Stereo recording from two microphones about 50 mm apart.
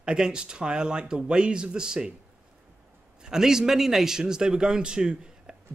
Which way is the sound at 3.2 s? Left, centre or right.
Centre.